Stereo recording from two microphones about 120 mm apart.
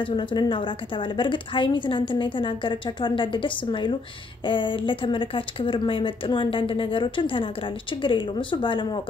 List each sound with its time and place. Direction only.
0.0 s a woman's voice: 45° left (ahead or behind)